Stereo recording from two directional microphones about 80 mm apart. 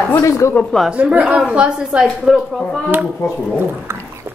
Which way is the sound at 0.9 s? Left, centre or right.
Centre.